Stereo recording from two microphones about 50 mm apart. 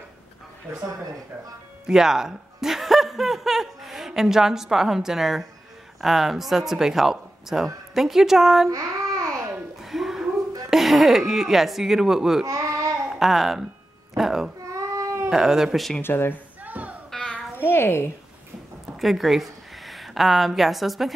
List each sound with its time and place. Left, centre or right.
0.7 s speech: right
1.9 s speech: centre
8.7 s babbling: right
9.8 s a sound: centre
12.4 s babbling: right
13.1 s a child's voice: centre
14.7 s baby cry: right
15.2 s speech: centre
16.0 s a woman's voice: left
16.6 s a sound: right
17.1 s babbling: centre
17.6 s a sound: left
18.9 s a woman's voice: centre